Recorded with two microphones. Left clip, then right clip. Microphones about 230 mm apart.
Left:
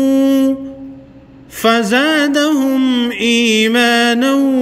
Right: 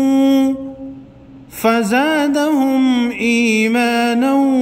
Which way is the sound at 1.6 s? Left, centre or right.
Right.